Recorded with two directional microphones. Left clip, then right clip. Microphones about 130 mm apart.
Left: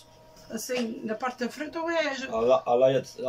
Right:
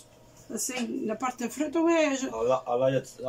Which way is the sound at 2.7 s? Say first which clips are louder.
Left 4 dB; 35° left (ahead or behind).